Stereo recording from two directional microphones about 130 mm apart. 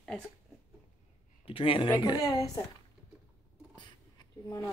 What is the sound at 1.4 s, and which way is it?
Speech, 45° left (ahead or behind).